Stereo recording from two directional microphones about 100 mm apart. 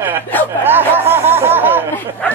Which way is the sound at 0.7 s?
20° right (ahead or behind).